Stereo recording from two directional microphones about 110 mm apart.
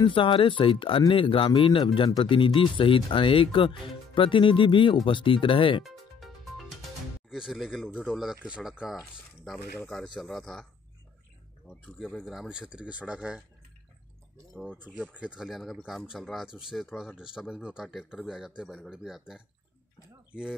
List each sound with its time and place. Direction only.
0.0 s speech: 50° left (ahead or behind)
5.9 s music: centre (ahead or behind)
7.2 s speech: 5° right (ahead or behind)
9.6 s speech: 15° left (ahead or behind)
10.1 s speech: 5° left (ahead or behind)
12.0 s speech: centre (ahead or behind)
14.7 s speech: 15° right (ahead or behind)
15.4 s speech: centre (ahead or behind)